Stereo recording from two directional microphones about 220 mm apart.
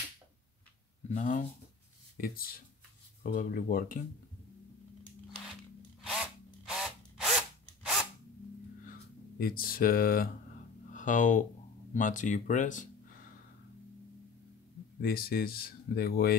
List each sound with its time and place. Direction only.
1.1 s speech: 35° left (ahead or behind)
6.6 s drill: centre (ahead or behind)
9.4 s speech: 40° left (ahead or behind)
15.0 s speech: 45° left (ahead or behind)